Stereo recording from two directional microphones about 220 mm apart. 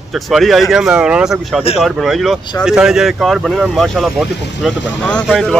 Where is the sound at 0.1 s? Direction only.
Centre (ahead or behind).